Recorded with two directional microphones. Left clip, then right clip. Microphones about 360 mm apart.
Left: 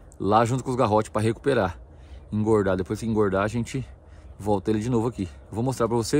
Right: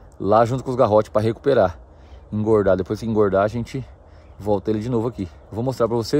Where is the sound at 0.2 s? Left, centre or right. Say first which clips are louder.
Right 4 dB; centre.